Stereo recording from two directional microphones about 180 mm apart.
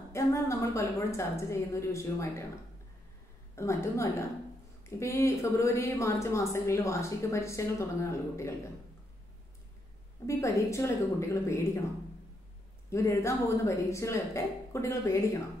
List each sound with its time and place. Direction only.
0.1 s a woman's voice: 15° left (ahead or behind)
3.5 s a woman's voice: 15° left (ahead or behind)
10.2 s a woman's voice: 15° left (ahead or behind)
12.9 s a woman's voice: 15° left (ahead or behind)